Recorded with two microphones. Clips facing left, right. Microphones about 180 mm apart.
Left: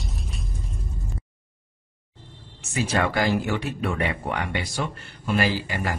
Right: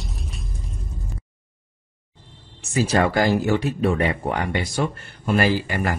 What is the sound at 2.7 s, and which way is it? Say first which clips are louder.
Speech: right 4 dB; 35° right (ahead or behind).